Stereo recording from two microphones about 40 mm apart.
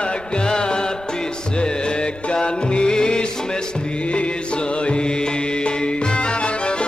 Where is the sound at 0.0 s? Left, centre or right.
Left.